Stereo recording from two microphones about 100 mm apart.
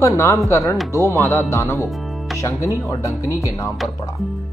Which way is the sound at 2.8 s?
30° left (ahead or behind).